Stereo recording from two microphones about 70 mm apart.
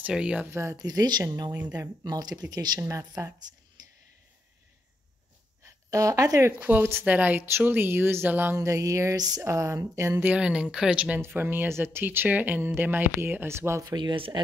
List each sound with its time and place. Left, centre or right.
0.0 s speech: centre
0.5 s speech: right
0.7 s speech: right
2.8 s speech: right
3.8 s a sound: right
5.6 s speech: right
6.5 s a woman's voice: right
8.5 s speech: right
10.2 s speech: centre
11.1 s speech: right
13.8 s speech: right